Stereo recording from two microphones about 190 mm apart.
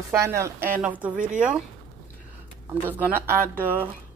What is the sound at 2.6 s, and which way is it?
Speech, 10° right (ahead or behind).